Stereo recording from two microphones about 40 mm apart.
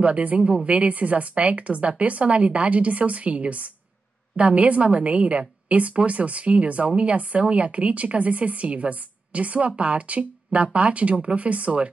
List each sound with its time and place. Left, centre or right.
0.0 s speech: right